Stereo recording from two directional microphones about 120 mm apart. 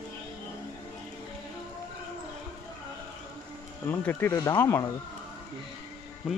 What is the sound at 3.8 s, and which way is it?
Speech, 15° left (ahead or behind).